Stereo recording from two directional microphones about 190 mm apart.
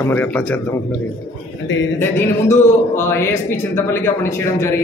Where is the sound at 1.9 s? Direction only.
10° left (ahead or behind).